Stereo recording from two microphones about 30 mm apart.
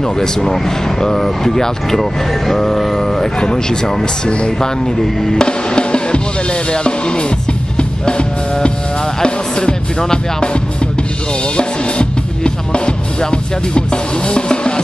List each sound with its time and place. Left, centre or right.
0.0 s speech: centre
5.3 s music: left